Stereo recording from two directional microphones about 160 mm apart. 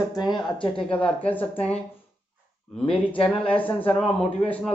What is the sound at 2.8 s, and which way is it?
Speech, 35° left (ahead or behind).